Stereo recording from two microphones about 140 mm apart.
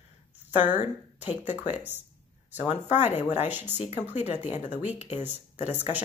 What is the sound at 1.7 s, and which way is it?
Speech, 15° right (ahead or behind).